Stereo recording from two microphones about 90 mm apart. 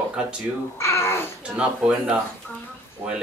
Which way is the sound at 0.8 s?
30° left (ahead or behind).